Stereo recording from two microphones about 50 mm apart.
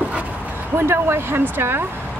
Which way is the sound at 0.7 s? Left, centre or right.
Right.